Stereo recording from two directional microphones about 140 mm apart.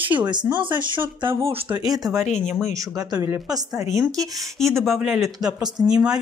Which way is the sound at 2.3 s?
60° left (ahead or behind).